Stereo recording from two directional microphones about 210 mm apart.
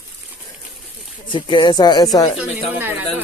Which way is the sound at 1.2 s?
25° left (ahead or behind).